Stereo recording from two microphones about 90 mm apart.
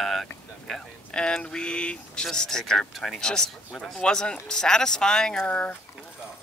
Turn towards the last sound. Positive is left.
turn(degrees=15)  # may be behind; listen again after turning